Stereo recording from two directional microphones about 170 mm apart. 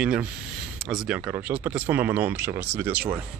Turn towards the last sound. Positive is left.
turn(degrees=-10)  # may be behind; listen again after turning